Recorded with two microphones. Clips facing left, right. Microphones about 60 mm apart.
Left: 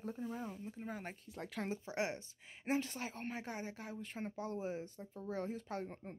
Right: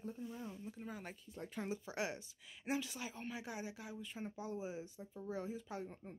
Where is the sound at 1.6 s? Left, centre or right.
Left.